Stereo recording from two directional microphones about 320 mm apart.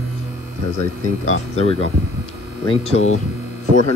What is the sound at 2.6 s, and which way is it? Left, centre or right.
Speech, centre.